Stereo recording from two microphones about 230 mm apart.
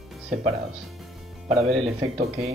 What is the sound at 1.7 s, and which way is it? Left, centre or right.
Speech, right.